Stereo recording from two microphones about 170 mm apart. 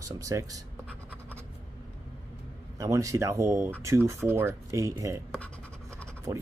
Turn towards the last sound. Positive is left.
turn(degrees=-20)  # may be behind; listen again after turning